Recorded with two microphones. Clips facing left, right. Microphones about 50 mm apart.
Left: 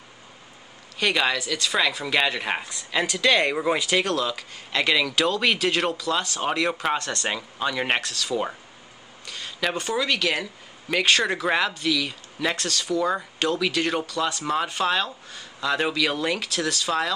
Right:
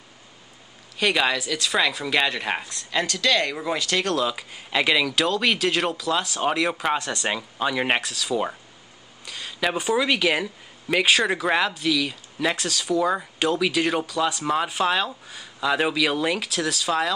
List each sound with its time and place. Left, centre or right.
0.9 s speech: centre
4.1 s speech: centre